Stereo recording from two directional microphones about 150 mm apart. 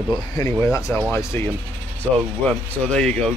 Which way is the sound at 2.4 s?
5° left (ahead or behind).